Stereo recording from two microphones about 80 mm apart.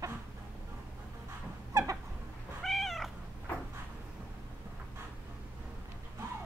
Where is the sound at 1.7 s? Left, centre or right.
Right.